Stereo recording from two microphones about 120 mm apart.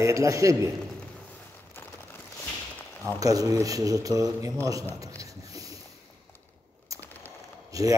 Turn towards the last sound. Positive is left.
turn(degrees=-30)  # may be behind; listen again after turning